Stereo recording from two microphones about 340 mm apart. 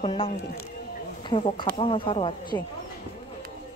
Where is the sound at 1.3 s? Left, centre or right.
Centre.